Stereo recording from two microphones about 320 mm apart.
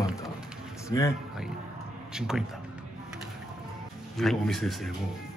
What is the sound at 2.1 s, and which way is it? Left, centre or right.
Speech, centre.